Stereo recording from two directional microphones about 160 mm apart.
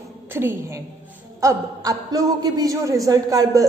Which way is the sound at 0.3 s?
15° right (ahead or behind).